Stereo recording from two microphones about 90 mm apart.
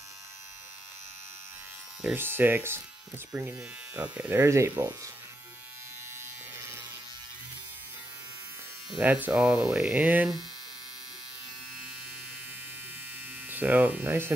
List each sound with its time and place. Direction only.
2.1 s speech: 25° right (ahead or behind)
3.5 s speech: 15° right (ahead or behind)
9.0 s speech: 20° right (ahead or behind)
9.3 s hum: 10° right (ahead or behind)
13.5 s speech: 20° right (ahead or behind)